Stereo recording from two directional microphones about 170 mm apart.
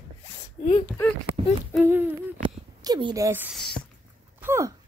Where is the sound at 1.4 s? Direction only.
30° right (ahead or behind).